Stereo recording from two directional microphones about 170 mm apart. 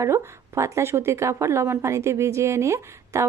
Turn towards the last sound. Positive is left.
turn(degrees=-15)  # may be behind; listen again after turning